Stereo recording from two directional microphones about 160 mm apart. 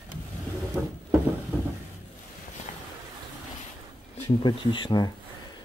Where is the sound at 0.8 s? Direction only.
5° right (ahead or behind).